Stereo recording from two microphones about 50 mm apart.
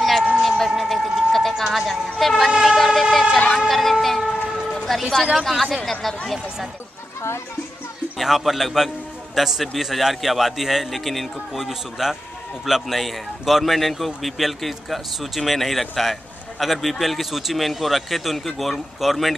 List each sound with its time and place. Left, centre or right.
0.4 s a sound: centre
1.6 s speech: centre
2.5 s vehicle: centre
3.5 s music: centre
4.0 s a sound: centre
4.8 s a man's voice: centre
7.2 s speech: left
8.2 s a man's voice: centre